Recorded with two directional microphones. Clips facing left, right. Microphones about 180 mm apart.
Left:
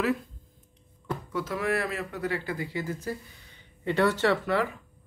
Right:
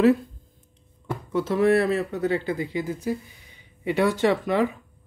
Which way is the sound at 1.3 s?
25° right (ahead or behind).